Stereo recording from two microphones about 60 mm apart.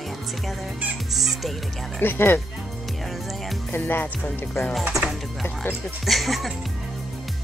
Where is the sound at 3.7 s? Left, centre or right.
Left.